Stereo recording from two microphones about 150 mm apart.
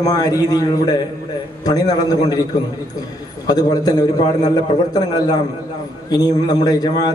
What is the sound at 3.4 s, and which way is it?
A man's voice, 25° left (ahead or behind).